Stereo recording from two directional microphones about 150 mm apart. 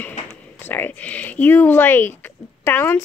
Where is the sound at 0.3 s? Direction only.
15° left (ahead or behind).